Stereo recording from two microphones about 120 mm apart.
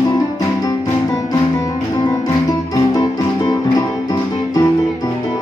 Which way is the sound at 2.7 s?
35° left (ahead or behind).